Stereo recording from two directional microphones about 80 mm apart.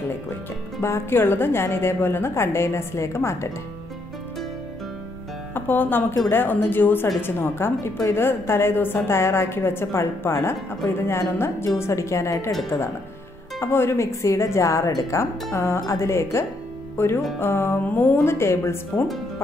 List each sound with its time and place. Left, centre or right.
0.7 s a woman's voice: left
5.5 s a woman's voice: left